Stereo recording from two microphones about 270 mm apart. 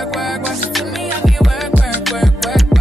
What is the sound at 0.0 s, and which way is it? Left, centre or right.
Music, centre.